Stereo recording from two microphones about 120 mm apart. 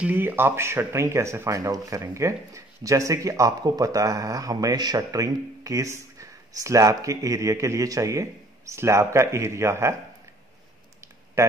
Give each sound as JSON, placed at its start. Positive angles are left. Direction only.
{"t": 0.0, "sound": "speech", "side_deg": -15}
{"t": 11.4, "sound": "speech", "side_deg": -20}